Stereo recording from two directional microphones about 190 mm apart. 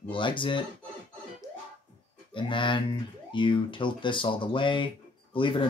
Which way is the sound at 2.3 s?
25° left (ahead or behind).